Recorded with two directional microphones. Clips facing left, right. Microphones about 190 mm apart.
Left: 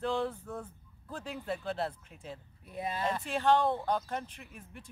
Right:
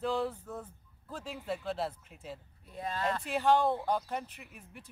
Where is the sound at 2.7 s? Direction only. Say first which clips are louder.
Even; 10° left (ahead or behind).